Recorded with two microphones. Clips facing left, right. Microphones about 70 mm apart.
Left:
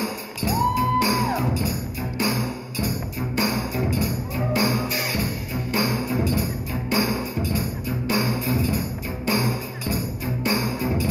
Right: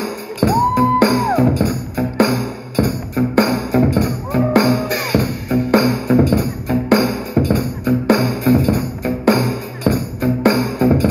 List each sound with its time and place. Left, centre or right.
0.0 s music: right